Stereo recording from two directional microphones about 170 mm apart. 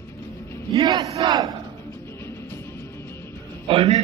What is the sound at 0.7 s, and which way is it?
Battle cry, 25° right (ahead or behind).